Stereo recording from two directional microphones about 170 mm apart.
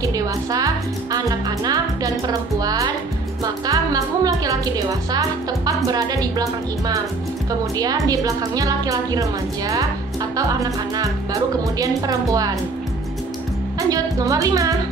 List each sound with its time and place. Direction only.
0.0 s speech: 20° right (ahead or behind)
7.7 s speech: 20° right (ahead or behind)
13.7 s speech: 20° right (ahead or behind)